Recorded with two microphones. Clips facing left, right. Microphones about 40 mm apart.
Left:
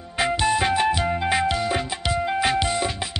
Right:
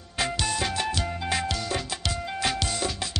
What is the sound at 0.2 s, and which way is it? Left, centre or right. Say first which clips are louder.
Music: left 7 dB; left.